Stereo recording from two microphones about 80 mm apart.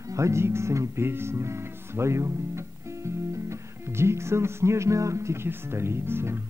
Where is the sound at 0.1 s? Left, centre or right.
Right.